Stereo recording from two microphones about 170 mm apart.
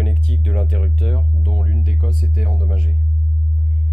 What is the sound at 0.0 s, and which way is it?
Speech, 5° left (ahead or behind).